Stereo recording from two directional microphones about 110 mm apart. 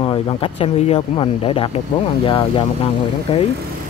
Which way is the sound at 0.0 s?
55° left (ahead or behind).